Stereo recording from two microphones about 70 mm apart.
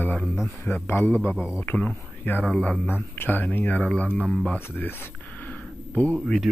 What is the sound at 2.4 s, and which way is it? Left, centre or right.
Speech, centre.